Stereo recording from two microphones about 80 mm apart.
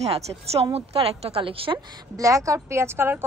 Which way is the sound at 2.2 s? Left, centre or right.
Right.